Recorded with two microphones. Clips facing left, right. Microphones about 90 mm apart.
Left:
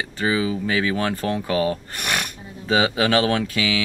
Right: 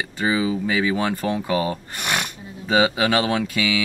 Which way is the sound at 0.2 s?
20° right (ahead or behind).